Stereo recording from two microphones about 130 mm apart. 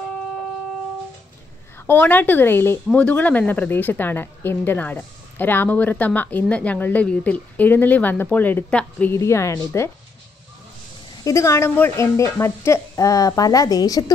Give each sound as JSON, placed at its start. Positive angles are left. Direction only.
{"t": 1.9, "sound": "a woman's voice", "side_deg": 15}
{"t": 9.1, "sound": "speech", "side_deg": 20}
{"t": 11.2, "sound": "speech", "side_deg": 25}